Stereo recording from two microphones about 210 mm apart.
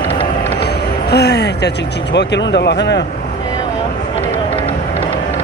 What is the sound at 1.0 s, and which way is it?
Speech, 50° left (ahead or behind).